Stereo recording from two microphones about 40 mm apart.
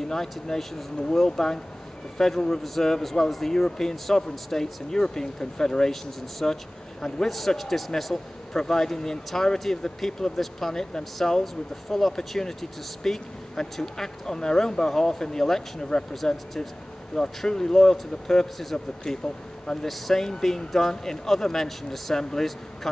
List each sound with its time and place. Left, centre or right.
0.1 s a man's voice: centre
7.2 s a man's voice: centre